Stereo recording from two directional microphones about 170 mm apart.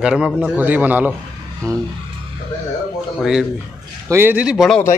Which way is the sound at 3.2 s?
5° right (ahead or behind).